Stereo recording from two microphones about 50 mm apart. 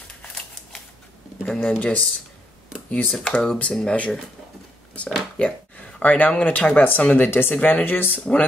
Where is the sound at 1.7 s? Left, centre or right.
Left.